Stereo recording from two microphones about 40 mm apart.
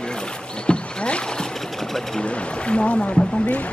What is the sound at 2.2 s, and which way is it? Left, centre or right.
Rowboat, left.